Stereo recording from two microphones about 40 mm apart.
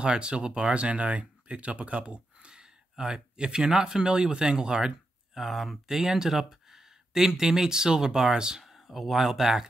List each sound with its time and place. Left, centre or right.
0.0 s speech: right
5.3 s speech: centre